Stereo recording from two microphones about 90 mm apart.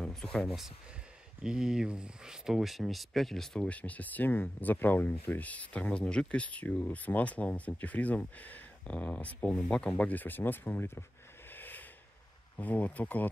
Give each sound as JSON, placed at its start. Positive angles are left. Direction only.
{"t": 0.0, "sound": "speech", "side_deg": 5}
{"t": 11.5, "sound": "a sound", "side_deg": 20}
{"t": 12.5, "sound": "speech", "side_deg": 20}